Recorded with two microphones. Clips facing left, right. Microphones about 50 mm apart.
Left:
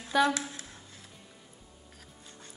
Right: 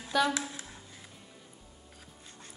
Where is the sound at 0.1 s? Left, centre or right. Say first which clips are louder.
Left 2 dB; centre.